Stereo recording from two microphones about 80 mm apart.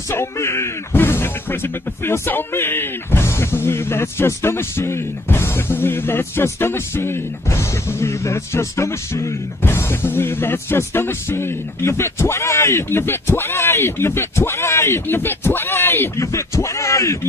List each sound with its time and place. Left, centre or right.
0.1 s speech: left
16.3 s speech: left